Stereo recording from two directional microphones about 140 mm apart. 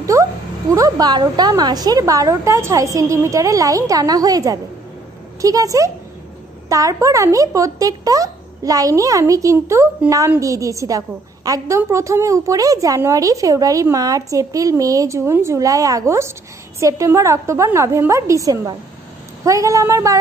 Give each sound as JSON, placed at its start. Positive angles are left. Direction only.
{"t": 0.0, "sound": "speech", "side_deg": -20}